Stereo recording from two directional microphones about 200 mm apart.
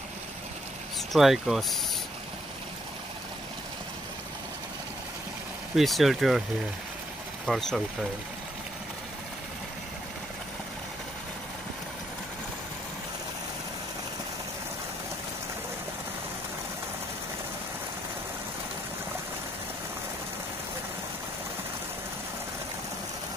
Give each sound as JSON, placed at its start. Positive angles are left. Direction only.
{"t": 1.1, "sound": "speech", "side_deg": 0}
{"t": 5.8, "sound": "speech", "side_deg": 0}
{"t": 7.4, "sound": "speech", "side_deg": 0}